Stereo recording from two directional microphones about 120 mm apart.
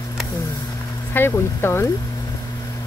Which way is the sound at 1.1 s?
20° left (ahead or behind).